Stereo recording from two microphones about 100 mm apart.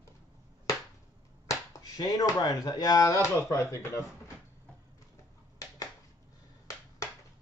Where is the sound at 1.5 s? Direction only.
40° left (ahead or behind).